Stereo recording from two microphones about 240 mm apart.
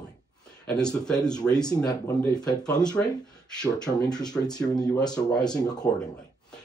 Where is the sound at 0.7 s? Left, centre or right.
Centre.